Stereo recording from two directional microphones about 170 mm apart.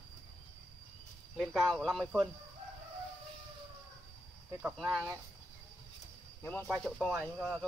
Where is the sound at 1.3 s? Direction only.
Centre (ahead or behind).